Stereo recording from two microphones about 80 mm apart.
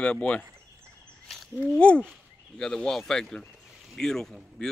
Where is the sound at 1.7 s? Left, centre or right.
Centre.